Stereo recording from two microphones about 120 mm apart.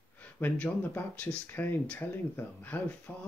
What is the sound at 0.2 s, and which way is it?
Speech, 15° left (ahead or behind).